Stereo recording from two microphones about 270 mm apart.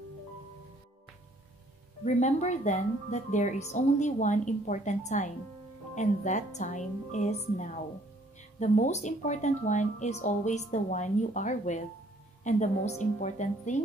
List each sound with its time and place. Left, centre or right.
2.0 s speech: left